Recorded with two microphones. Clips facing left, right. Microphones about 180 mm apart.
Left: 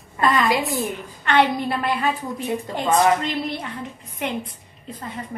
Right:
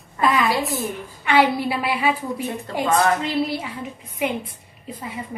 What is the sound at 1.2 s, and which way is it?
A woman's voice, 5° right (ahead or behind).